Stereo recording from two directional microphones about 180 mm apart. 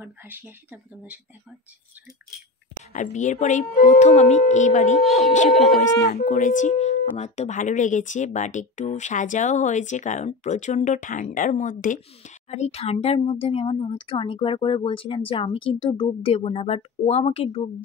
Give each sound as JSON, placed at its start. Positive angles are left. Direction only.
{"t": 0.0, "sound": "speech", "side_deg": -10}
{"t": 2.9, "sound": "speech", "side_deg": 45}
{"t": 5.5, "sound": "speech", "side_deg": 0}
{"t": 6.1, "sound": "speech", "side_deg": 50}